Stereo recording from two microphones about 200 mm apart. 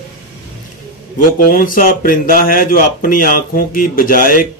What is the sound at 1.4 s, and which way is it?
Speech, 45° left (ahead or behind).